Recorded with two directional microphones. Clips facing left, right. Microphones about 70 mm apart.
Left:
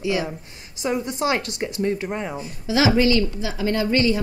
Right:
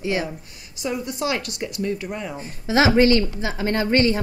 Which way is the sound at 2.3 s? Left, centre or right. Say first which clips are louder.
Right 3 dB; right.